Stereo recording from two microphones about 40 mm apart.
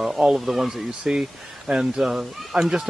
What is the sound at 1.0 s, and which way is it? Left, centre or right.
Speech, right.